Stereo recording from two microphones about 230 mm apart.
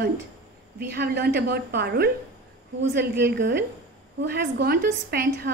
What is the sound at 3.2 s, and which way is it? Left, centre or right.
A woman's voice, right.